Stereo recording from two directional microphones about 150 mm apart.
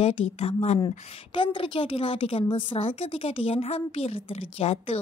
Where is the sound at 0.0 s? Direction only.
40° left (ahead or behind).